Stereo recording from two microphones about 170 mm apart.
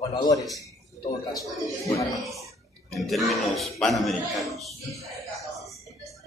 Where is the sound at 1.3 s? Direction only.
Centre (ahead or behind).